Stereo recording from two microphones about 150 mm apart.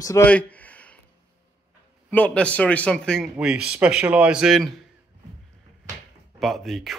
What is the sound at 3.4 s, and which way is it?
Speech, 5° right (ahead or behind).